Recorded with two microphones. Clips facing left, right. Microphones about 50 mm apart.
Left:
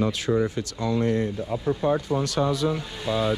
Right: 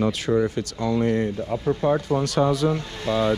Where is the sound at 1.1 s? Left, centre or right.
Right.